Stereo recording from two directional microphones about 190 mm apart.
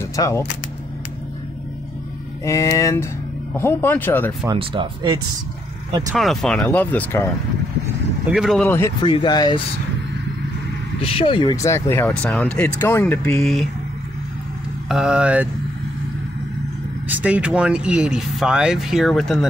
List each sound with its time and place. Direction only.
0.0 s speech: 15° left (ahead or behind)
2.4 s speech: 15° left (ahead or behind)
4.5 s speech: 25° right (ahead or behind)
6.1 s speech: centre (ahead or behind)
8.3 s speech: centre (ahead or behind)
8.6 s speech: 10° left (ahead or behind)
9.0 s speech: 25° left (ahead or behind)
11.0 s speech: 30° left (ahead or behind); by 13.4 s 10° left (ahead or behind)
13.4 s speech: centre (ahead or behind)
14.9 s speech: 5° right (ahead or behind)
17.1 s speech: 5° right (ahead or behind)